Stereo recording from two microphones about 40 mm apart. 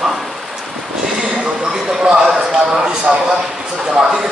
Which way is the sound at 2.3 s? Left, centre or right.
Centre.